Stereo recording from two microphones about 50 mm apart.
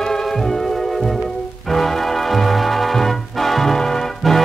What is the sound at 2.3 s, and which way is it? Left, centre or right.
Music, centre.